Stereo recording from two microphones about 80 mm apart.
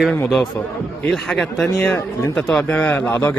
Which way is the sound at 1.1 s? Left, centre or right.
Centre.